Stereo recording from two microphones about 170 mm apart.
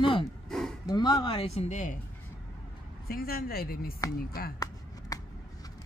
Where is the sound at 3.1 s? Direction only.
60° left (ahead or behind).